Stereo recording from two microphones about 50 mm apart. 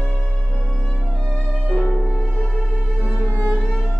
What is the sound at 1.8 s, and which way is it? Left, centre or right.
Music, centre.